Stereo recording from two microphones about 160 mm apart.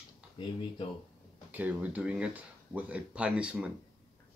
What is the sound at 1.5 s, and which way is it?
Speech, 10° right (ahead or behind).